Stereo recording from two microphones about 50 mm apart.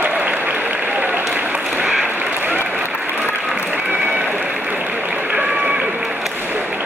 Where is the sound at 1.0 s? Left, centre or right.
Right.